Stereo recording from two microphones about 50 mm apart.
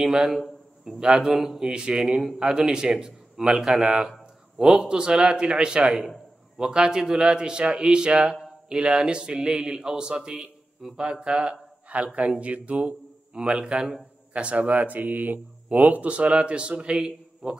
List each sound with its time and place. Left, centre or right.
0.0 s a man's voice: centre
1.7 s a man's voice: centre
2.0 s a man's voice: centre
4.8 s a man's voice: centre
13.4 s a man's voice: centre